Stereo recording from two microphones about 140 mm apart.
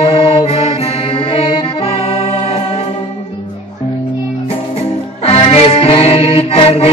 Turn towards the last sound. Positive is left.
turn(degrees=45)  # may be behind; listen again after turning